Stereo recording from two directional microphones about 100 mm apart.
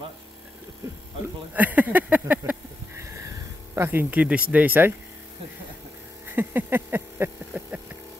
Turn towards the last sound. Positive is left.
turn(degrees=-20)  # may be behind; listen again after turning